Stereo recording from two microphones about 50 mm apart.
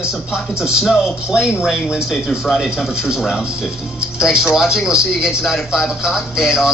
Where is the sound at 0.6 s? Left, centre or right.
Centre.